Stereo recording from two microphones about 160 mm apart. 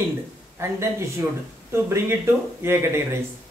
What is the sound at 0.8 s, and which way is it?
Speech, 15° right (ahead or behind).